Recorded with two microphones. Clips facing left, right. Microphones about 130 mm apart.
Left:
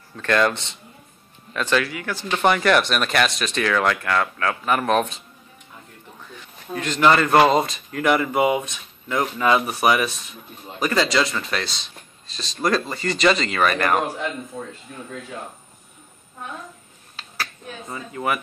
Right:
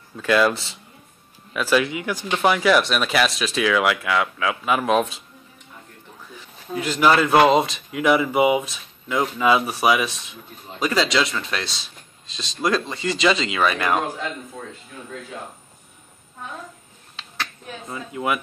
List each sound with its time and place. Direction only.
0.1 s a man's voice: 10° right (ahead or behind)
2.3 s speech: 5° right (ahead or behind)
6.7 s speech: 5° right (ahead or behind)
17.1 s a sound: 5° left (ahead or behind)